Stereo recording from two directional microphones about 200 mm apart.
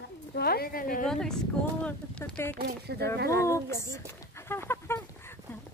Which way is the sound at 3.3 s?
15° left (ahead or behind).